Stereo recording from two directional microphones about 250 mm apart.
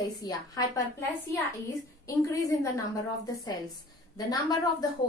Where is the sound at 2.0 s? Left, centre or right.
Centre.